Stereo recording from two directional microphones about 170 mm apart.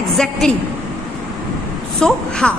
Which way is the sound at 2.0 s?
5° left (ahead or behind).